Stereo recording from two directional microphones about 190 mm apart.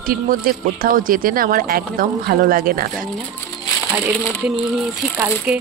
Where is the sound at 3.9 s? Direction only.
5° right (ahead or behind).